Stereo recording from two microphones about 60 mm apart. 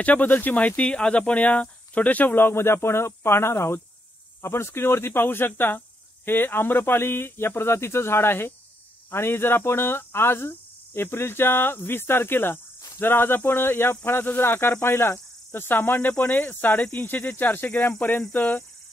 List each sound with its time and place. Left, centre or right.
0.0 s speech: left